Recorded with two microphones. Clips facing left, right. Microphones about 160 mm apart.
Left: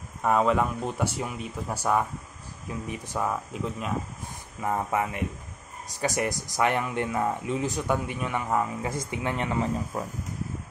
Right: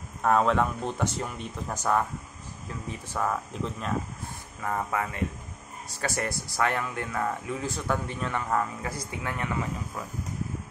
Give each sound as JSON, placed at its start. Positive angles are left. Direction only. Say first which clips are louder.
{"t": 0.2, "sound": "speech", "louder": "even", "side_deg": 5}
{"t": 4.6, "sound": "speech", "louder": "left 3 dB", "side_deg": 20}